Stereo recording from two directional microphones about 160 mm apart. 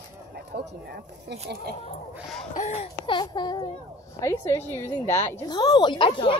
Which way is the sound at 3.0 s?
30° left (ahead or behind).